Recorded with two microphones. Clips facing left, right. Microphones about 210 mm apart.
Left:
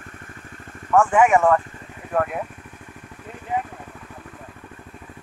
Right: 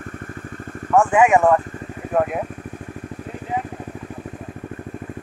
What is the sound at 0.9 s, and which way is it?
Speech, 15° right (ahead or behind).